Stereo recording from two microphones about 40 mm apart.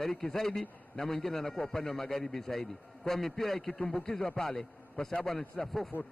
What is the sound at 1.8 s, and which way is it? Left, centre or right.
Speech, left.